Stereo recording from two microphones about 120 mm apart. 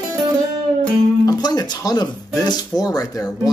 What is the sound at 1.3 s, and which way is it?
Speech, 30° left (ahead or behind).